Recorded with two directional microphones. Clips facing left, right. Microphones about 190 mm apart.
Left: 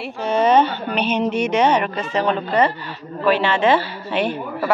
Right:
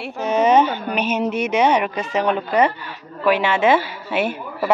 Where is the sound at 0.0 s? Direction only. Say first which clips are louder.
Even; 10° right (ahead or behind).